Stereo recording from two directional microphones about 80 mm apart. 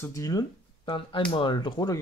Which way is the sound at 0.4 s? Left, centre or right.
Left.